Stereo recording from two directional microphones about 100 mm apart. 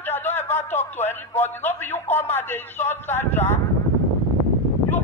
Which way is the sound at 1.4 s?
20° left (ahead or behind).